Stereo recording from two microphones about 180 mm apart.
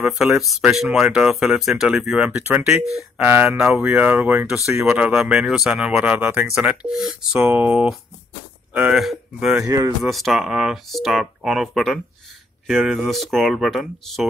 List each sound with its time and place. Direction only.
0.0 s speech: 5° right (ahead or behind)
9.6 s speech: 20° right (ahead or behind)
10.0 s speech: centre (ahead or behind)